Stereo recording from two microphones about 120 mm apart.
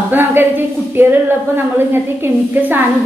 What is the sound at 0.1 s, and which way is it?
A woman's voice, 20° right (ahead or behind).